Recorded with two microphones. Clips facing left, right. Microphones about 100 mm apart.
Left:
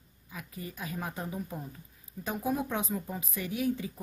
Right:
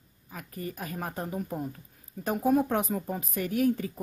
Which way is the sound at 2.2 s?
55° right (ahead or behind).